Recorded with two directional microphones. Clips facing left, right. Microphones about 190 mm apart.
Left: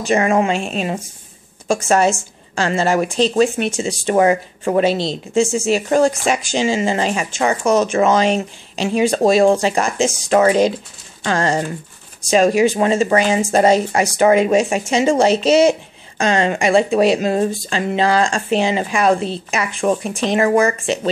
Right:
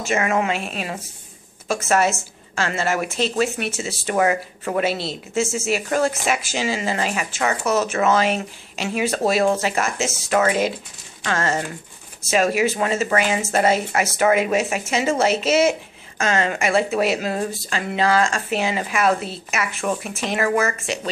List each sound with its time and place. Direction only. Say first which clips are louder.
0.0 s a woman's voice: left 5 dB; 35° left (ahead or behind)